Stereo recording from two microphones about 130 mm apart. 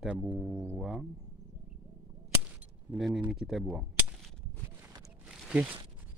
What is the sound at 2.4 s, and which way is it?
Gunshot, 5° right (ahead or behind).